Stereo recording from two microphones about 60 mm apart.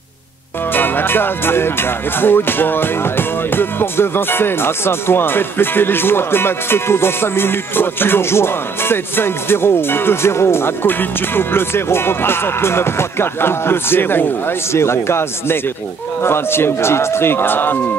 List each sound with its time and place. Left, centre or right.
0.7 s speech: left